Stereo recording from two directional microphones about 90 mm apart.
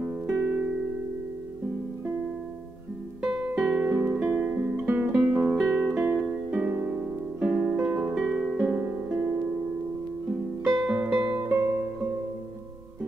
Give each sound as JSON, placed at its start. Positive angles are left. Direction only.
{"t": 0.0, "sound": "music", "side_deg": -20}
{"t": 3.2, "sound": "music", "side_deg": -10}
{"t": 8.2, "sound": "music", "side_deg": -5}
{"t": 8.6, "sound": "music", "side_deg": -20}
{"t": 10.9, "sound": "music", "side_deg": -15}